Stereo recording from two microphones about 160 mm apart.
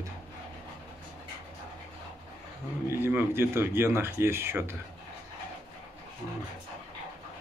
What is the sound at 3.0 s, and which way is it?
Speech, 15° right (ahead or behind).